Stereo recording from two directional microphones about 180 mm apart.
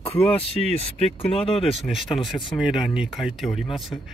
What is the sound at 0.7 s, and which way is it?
Speech, 35° left (ahead or behind).